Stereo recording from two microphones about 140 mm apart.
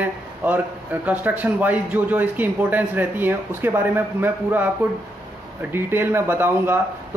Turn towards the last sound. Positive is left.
turn(degrees=-15)  # may be behind; listen again after turning